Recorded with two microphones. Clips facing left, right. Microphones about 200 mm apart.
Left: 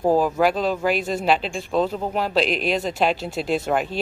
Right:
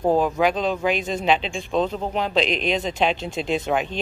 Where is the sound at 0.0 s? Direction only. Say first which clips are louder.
Left 1 dB; 5° left (ahead or behind).